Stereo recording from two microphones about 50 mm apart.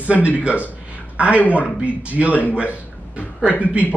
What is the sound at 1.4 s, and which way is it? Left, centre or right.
Speech, left.